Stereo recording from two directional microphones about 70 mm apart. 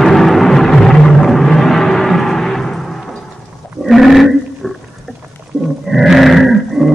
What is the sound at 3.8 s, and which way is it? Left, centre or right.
Wild animals, centre.